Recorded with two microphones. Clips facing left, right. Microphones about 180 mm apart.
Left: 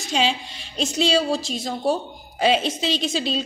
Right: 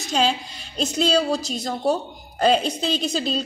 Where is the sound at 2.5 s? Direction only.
40° right (ahead or behind).